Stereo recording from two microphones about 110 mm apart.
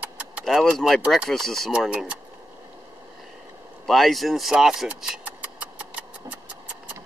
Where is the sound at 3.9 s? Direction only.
Centre (ahead or behind).